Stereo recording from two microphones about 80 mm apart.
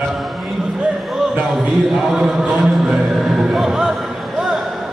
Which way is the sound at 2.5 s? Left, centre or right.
Centre.